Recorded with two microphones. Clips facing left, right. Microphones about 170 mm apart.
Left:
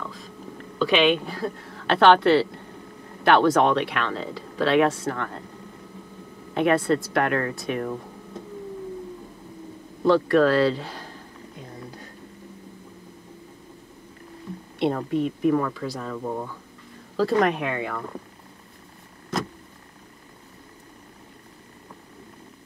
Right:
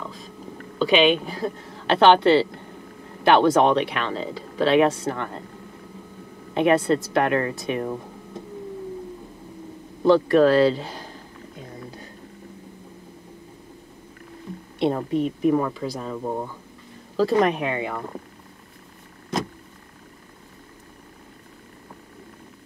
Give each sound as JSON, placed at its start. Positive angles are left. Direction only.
{"t": 0.7, "sound": "a woman's voice", "side_deg": -25}
{"t": 6.5, "sound": "speech", "side_deg": -20}
{"t": 10.0, "sound": "speech", "side_deg": -25}
{"t": 14.9, "sound": "speech", "side_deg": -20}